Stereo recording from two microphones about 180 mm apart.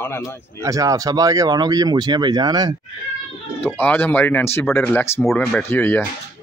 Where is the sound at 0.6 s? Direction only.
20° right (ahead or behind).